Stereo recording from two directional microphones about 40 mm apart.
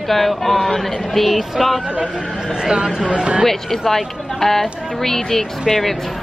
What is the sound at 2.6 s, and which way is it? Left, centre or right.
Speech, centre.